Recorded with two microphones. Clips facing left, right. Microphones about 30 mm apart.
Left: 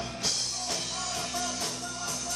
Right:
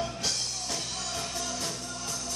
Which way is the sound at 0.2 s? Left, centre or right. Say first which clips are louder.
Even; centre.